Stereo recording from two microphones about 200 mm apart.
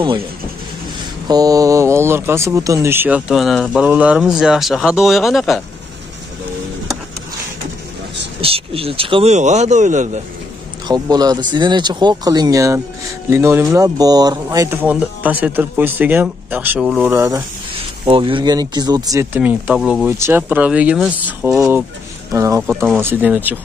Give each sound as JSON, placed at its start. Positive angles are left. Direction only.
{"t": 1.2, "sound": "speech", "side_deg": -20}
{"t": 8.4, "sound": "speech", "side_deg": -30}
{"t": 10.9, "sound": "speech", "side_deg": -20}
{"t": 17.1, "sound": "speech", "side_deg": -15}
{"t": 22.3, "sound": "speech", "side_deg": -15}